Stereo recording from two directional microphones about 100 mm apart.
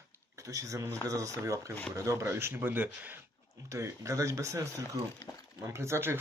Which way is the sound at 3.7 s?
30° right (ahead or behind).